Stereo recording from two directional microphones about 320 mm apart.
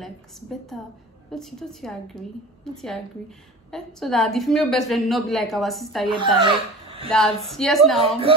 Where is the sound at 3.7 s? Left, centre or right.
Centre.